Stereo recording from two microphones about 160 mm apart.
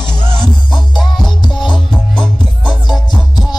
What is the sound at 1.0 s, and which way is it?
Music, centre (ahead or behind).